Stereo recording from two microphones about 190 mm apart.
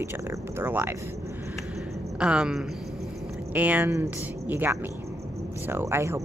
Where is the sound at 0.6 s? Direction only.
10° right (ahead or behind).